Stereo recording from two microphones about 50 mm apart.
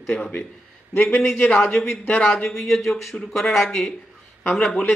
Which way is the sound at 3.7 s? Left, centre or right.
Centre.